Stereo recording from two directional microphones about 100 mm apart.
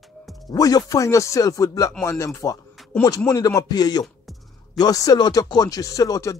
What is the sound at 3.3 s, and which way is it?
Speech, 35° left (ahead or behind).